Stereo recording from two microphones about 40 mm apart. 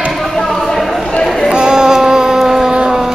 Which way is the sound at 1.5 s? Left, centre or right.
Centre.